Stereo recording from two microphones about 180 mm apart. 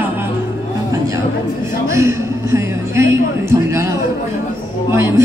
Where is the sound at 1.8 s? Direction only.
15° right (ahead or behind).